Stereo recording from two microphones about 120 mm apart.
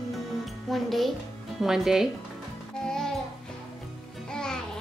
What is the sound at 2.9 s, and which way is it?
Music, 5° left (ahead or behind).